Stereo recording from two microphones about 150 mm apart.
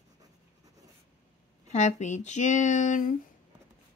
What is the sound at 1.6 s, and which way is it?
A woman's voice, 50° left (ahead or behind).